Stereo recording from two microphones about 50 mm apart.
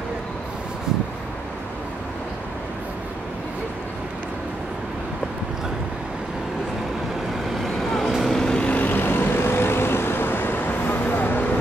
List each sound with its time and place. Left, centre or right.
7.5 s vehicle: centre
8.5 s vehicle: left